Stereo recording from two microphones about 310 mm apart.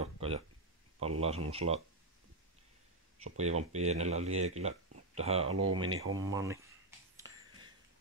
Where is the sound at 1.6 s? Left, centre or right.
Right.